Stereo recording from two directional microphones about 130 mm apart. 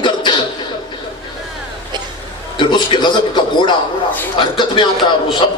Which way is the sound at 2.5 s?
35° left (ahead or behind).